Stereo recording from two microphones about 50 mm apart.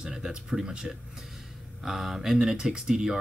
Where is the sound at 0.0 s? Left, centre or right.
Centre.